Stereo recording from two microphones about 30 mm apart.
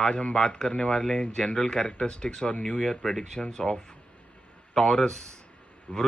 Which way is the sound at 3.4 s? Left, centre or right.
Left.